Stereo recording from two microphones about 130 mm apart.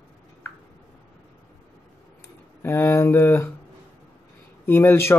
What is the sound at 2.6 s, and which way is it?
Speech, 15° left (ahead or behind).